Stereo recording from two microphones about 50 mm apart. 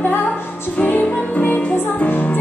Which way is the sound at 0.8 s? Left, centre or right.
Left.